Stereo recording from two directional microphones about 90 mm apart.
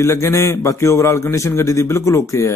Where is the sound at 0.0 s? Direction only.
30° left (ahead or behind).